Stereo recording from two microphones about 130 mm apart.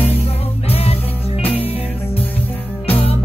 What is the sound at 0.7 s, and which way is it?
Music, 50° left (ahead or behind).